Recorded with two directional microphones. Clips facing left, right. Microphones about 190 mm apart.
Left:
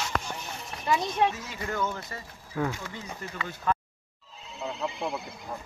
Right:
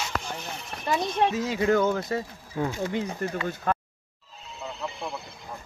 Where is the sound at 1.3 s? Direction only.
90° right.